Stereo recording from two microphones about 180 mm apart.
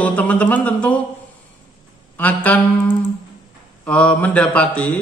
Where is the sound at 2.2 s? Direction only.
10° left (ahead or behind).